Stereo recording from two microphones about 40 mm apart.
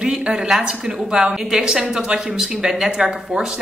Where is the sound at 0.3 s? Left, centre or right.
Centre.